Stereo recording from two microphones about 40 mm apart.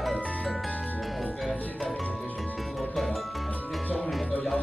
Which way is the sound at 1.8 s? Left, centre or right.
Centre.